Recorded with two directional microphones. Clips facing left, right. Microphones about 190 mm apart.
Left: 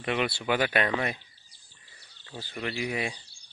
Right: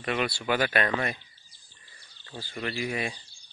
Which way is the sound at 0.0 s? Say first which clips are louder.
Even; 15° left (ahead or behind).